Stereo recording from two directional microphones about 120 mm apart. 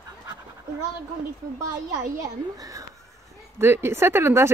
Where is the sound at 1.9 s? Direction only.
30° right (ahead or behind).